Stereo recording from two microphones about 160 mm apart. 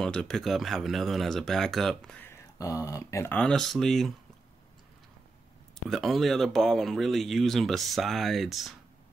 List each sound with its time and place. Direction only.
0.0 s speech: 5° left (ahead or behind)
2.6 s speech: 20° left (ahead or behind)
3.3 s speech: 5° left (ahead or behind)
5.9 s speech: centre (ahead or behind)